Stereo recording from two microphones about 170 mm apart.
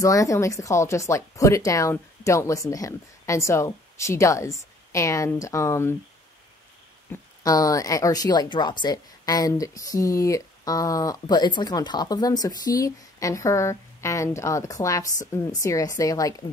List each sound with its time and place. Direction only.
0.0 s speech: 20° left (ahead or behind)
7.1 s speech: 20° left (ahead or behind)